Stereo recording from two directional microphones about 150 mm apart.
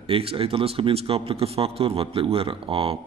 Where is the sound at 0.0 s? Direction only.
40° right (ahead or behind).